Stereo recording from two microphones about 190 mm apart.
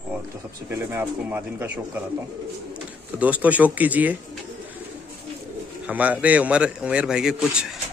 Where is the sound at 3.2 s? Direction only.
10° right (ahead or behind).